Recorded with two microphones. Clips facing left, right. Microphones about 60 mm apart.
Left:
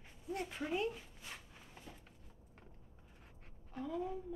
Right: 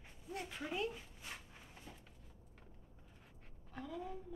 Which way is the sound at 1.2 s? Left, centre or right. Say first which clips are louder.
Even; centre.